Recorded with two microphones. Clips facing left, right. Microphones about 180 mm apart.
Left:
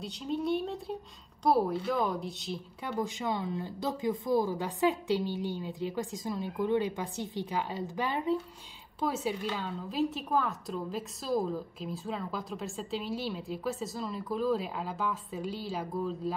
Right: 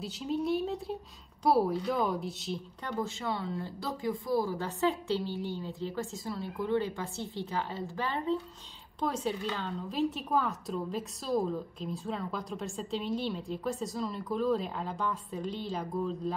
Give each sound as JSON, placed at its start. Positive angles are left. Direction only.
{"t": 0.0, "sound": "a woman's voice", "side_deg": 0}